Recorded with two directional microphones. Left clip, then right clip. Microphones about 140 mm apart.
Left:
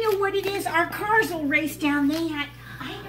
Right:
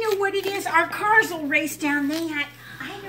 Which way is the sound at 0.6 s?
10° left (ahead or behind).